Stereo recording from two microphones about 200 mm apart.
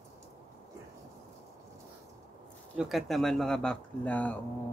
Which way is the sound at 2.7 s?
Centre (ahead or behind).